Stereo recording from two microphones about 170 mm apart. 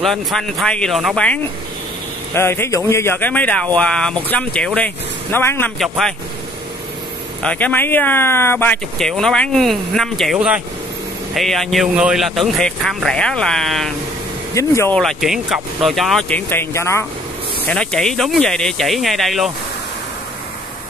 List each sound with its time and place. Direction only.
0.0 s speech: centre (ahead or behind)
5.8 s speech: centre (ahead or behind)
7.4 s speech: 10° left (ahead or behind)
14.5 s speech: 15° left (ahead or behind)
15.0 s speech: centre (ahead or behind); by 17.0 s 15° left (ahead or behind)
17.6 s speech: 5° left (ahead or behind)